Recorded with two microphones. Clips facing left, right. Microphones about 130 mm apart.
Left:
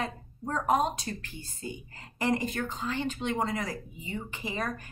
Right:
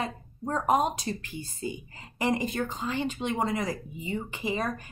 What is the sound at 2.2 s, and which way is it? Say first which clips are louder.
Speech: right 1 dB; 15° right (ahead or behind).